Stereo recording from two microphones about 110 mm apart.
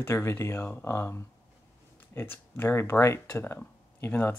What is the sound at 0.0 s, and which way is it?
Speech, 25° left (ahead or behind).